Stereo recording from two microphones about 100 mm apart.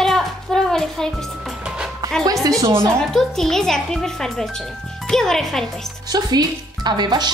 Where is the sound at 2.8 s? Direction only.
5° left (ahead or behind).